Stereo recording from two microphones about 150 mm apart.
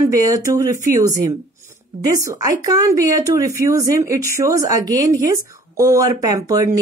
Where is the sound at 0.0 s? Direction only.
20° right (ahead or behind).